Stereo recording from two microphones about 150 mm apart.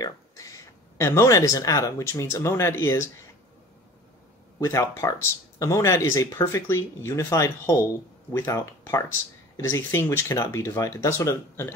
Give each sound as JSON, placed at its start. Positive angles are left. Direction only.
{"t": 0.0, "sound": "speech", "side_deg": 20}
{"t": 4.6, "sound": "speech", "side_deg": 20}